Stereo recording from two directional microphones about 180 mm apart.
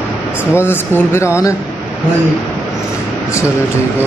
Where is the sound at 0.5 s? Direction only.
10° left (ahead or behind).